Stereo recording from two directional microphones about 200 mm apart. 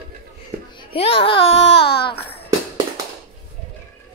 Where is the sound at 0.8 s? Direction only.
30° left (ahead or behind).